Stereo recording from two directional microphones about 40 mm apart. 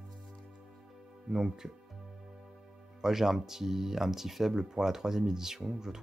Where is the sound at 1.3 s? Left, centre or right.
Centre.